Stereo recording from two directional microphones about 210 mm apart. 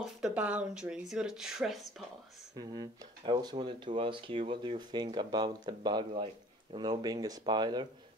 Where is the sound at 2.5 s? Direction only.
20° right (ahead or behind).